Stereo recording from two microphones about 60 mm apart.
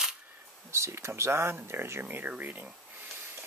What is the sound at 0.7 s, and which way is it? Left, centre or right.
Speech, right.